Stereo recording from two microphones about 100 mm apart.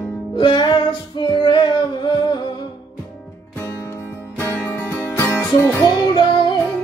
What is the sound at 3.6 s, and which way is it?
Music, 25° left (ahead or behind).